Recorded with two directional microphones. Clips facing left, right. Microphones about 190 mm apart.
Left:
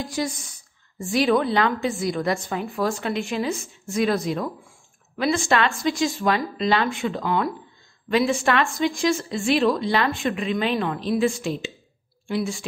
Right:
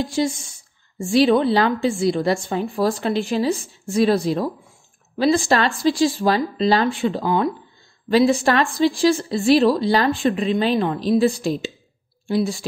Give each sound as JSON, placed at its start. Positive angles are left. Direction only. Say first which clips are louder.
{"t": 0.0, "sound": "a woman's voice", "louder": "right 6 dB", "side_deg": -25}